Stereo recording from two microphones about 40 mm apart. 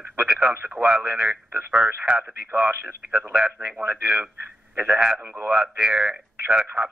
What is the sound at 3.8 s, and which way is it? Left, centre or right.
Speech, right.